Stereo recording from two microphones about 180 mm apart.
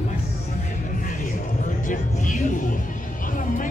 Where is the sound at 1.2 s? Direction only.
45° left (ahead or behind).